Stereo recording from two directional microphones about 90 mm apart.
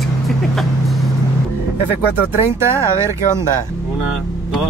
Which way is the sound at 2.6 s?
30° right (ahead or behind).